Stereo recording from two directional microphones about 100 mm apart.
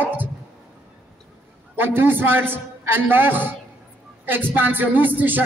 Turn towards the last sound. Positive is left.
turn(degrees=-20)  # may be behind; listen again after turning